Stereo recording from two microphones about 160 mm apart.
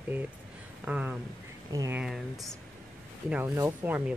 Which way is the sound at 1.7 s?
20° right (ahead or behind).